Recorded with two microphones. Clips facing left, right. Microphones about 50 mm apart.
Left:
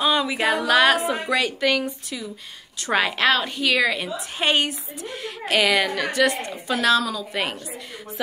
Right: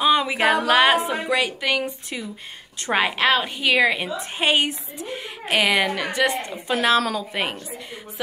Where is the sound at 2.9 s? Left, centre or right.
Centre.